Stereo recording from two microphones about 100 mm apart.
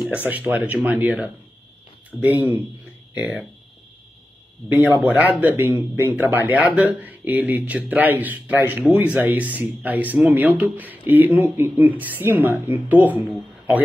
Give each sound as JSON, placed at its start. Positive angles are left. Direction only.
{"t": 0.1, "sound": "speech", "side_deg": -15}
{"t": 4.6, "sound": "speech", "side_deg": -15}